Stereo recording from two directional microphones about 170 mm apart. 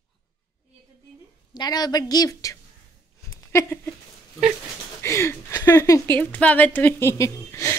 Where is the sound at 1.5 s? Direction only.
25° left (ahead or behind).